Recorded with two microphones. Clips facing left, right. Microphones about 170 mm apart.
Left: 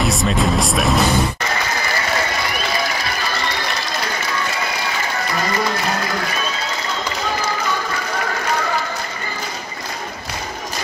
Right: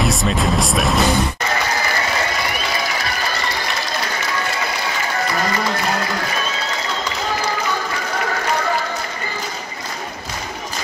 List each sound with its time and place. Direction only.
0.0 s speech: centre (ahead or behind)